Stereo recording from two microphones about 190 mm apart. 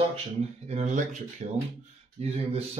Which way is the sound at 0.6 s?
40° right (ahead or behind).